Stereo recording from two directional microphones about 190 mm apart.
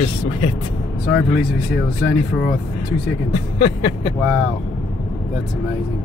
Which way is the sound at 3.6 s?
30° left (ahead or behind).